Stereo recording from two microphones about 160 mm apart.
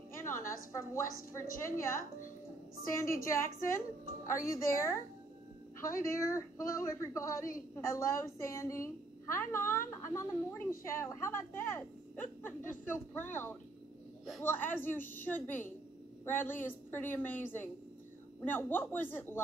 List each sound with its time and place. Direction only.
0.1 s a woman's voice: 15° left (ahead or behind)